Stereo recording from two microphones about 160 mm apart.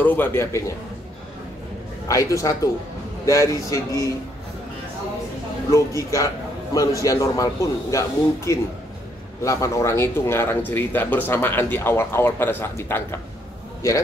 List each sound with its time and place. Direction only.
0.0 s speech: 10° left (ahead or behind)
2.0 s a man's voice: 20° left (ahead or behind)
5.7 s a man's voice: 20° left (ahead or behind)